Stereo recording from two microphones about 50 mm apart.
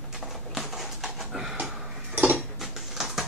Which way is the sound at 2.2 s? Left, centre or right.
Right.